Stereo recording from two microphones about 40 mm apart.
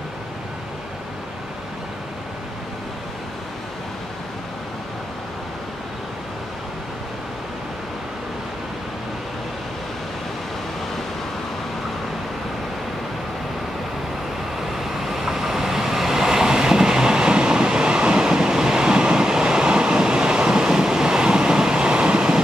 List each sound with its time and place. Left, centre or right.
14.8 s vehicle: centre; by 18.3 s right
18.3 s train: centre